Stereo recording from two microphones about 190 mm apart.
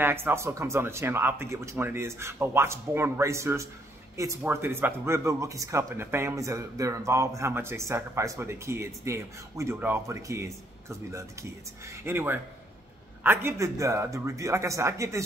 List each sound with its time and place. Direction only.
0.0 s speech: 10° right (ahead or behind)